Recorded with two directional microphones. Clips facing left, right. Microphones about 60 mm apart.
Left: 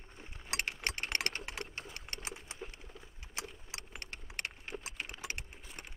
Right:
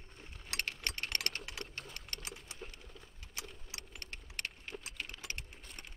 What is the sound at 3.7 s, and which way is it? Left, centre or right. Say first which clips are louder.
Keys jangling: left 2 dB; left.